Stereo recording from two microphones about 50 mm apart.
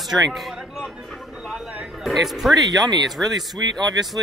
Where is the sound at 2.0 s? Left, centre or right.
Centre.